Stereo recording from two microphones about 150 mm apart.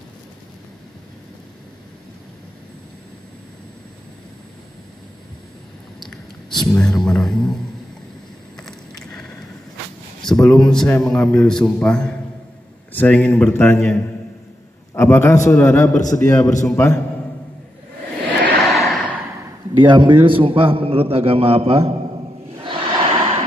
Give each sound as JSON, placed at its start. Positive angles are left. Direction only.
{"t": 6.0, "sound": "speech", "side_deg": 5}
{"t": 8.5, "sound": "vehicle", "side_deg": 5}
{"t": 10.2, "sound": "a man's voice", "side_deg": 5}
{"t": 15.0, "sound": "speech", "side_deg": 15}
{"t": 18.4, "sound": "vehicle", "side_deg": 0}
{"t": 19.8, "sound": "a man's voice", "side_deg": -30}
{"t": 22.6, "sound": "a sound", "side_deg": -35}